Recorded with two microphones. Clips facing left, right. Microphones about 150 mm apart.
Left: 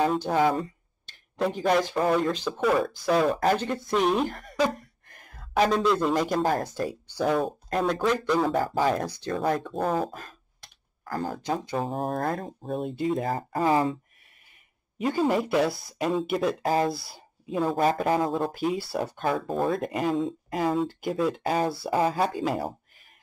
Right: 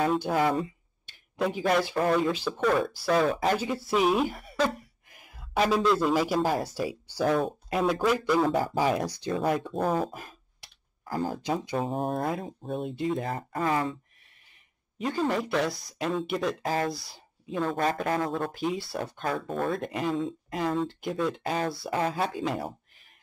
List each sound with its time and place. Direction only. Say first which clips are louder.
0.5 s a sound: left 1 dB; 5° right (ahead or behind)
1.9 s speech: left 1 dB; centre (ahead or behind)
4.6 s a sound: left 2 dB; 5° right (ahead or behind)
5.7 s speech: even; 5° right (ahead or behind)
10.1 s computer keyboard: left 1 dB; 10° right (ahead or behind)
11.7 s speech: even; centre (ahead or behind)
13.6 s speech: left 4 dB; 30° left (ahead or behind)
15.0 s speech: left 3 dB; 5° left (ahead or behind)
17.6 s speech: left 4 dB; 15° left (ahead or behind)
18.5 s speech: left 3 dB; centre (ahead or behind)